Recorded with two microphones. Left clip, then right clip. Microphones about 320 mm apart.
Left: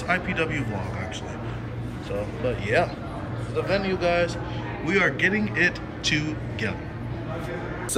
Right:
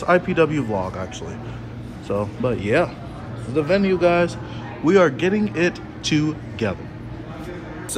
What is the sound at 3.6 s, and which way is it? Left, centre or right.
Speech, centre.